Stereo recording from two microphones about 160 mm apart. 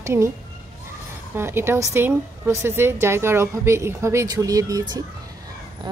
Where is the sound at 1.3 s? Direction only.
15° right (ahead or behind).